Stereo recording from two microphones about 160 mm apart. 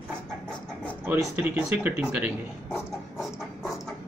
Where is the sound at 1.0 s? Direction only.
10° right (ahead or behind).